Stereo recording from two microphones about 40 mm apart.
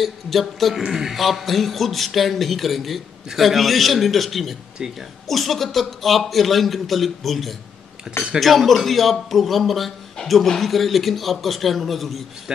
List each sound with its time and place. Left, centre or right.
0.0 s a man's voice: centre
0.8 s a man's voice: centre
1.1 s a man's voice: centre
8.1 s a man's voice: centre
8.4 s a man's voice: centre
12.5 s speech: right